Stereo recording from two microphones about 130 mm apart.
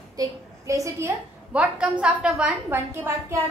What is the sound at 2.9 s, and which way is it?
Speech, 20° right (ahead or behind).